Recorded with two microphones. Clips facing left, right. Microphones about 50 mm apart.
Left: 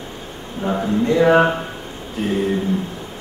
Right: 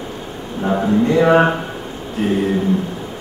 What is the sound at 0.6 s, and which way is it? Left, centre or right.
Speech, centre.